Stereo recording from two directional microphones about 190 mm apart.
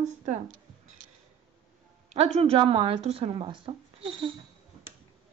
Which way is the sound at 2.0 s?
35° right (ahead or behind).